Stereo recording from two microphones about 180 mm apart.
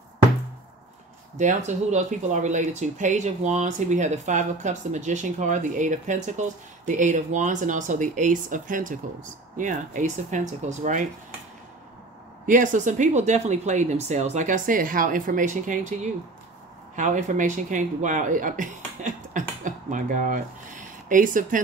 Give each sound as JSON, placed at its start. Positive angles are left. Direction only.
{"t": 1.4, "sound": "speech", "side_deg": -40}
{"t": 12.4, "sound": "speech", "side_deg": -45}